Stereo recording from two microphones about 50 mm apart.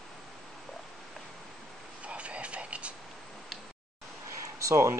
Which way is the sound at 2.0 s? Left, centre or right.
Right.